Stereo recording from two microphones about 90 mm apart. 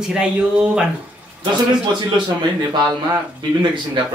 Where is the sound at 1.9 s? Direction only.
60° right (ahead or behind).